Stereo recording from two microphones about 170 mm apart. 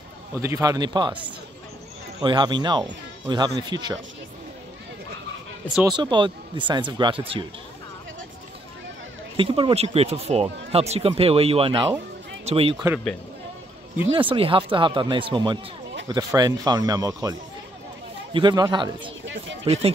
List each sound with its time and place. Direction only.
0.4 s speech: 15° right (ahead or behind)
2.2 s speech: 25° right (ahead or behind)
5.9 s speech: 25° right (ahead or behind)
9.4 s speech: 30° right (ahead or behind)
14.3 s speech: 30° right (ahead or behind)